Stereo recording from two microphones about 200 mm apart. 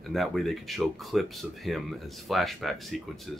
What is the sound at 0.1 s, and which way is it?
Speech, centre (ahead or behind).